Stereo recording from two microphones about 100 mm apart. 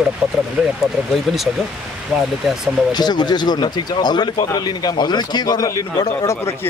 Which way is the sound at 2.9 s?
45° left (ahead or behind).